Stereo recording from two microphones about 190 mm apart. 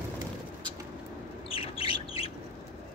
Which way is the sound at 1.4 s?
30° left (ahead or behind).